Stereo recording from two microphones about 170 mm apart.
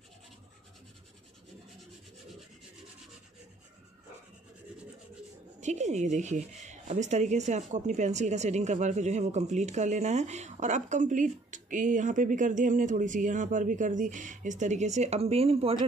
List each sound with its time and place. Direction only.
5.6 s speech: 45° right (ahead or behind)